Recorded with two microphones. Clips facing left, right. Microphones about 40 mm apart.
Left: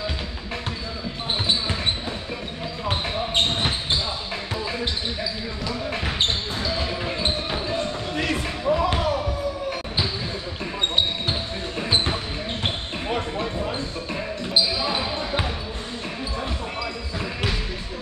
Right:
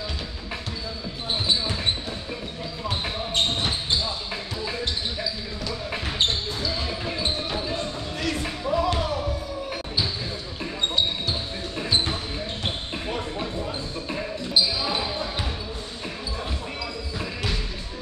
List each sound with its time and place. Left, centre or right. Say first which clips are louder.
2.9 s basketball bounce: left 3 dB; left
6.7 s basketball bounce: left 3 dB; centre
8.2 s music: left 2 dB; left
11.9 s basketball bounce: left 2 dB; left
13.4 s basketball bounce: left 3 dB; centre